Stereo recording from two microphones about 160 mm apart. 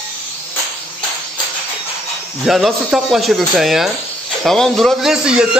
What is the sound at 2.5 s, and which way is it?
Speech, centre (ahead or behind).